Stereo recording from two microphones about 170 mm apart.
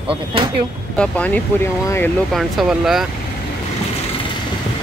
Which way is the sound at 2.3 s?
Centre (ahead or behind).